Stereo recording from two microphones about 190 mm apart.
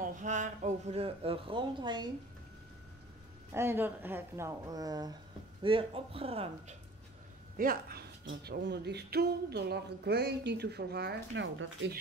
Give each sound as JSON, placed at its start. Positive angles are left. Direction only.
{"t": 0.0, "sound": "speech", "side_deg": -40}
{"t": 3.5, "sound": "speech", "side_deg": -10}
{"t": 7.5, "sound": "speech", "side_deg": -50}